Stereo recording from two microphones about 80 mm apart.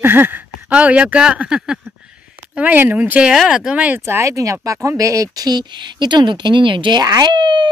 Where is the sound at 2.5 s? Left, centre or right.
Right.